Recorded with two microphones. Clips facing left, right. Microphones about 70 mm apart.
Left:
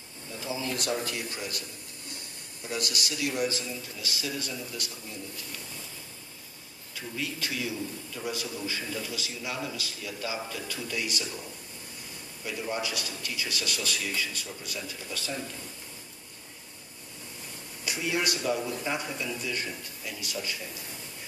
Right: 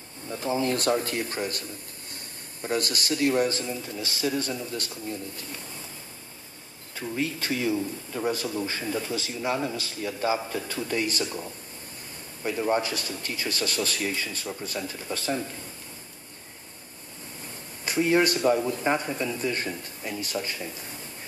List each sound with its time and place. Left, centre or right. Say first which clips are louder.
0.3 s a man's voice: right 7 dB; right
2.6 s a man's voice: right 5 dB; right
7.0 s a man's voice: right 5 dB; right
12.4 s a man's voice: right 7 dB; right
17.8 s a man's voice: right 8 dB; right